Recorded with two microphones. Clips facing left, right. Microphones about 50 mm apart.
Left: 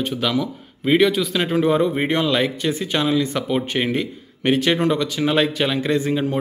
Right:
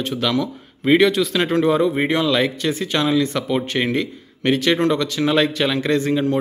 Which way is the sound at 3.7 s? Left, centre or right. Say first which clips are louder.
Right 1 dB; centre.